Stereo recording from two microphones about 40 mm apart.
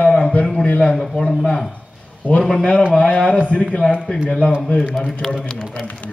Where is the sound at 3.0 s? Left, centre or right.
Left.